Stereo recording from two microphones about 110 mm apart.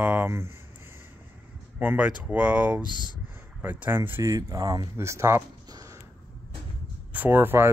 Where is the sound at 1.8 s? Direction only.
15° right (ahead or behind).